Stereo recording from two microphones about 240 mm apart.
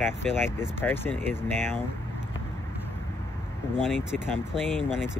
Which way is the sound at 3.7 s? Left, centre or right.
Centre.